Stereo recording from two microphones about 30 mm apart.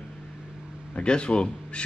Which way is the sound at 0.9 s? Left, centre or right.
Left.